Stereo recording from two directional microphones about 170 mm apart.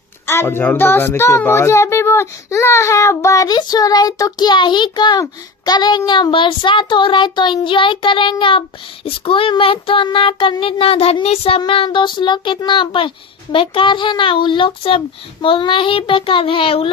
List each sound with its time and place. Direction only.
0.3 s a child's voice: 15° left (ahead or behind); by 16.9 s 30° left (ahead or behind)